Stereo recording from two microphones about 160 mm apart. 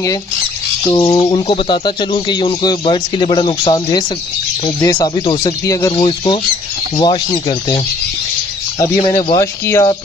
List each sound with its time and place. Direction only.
0.9 s speech: 30° left (ahead or behind)
8.7 s speech: 30° left (ahead or behind)
9.4 s speech: 20° left (ahead or behind)